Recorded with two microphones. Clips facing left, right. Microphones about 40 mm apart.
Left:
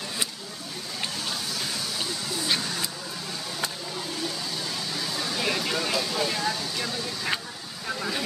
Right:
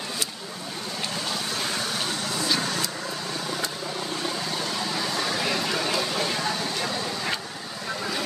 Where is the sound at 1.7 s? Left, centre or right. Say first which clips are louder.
Right 3 dB; right.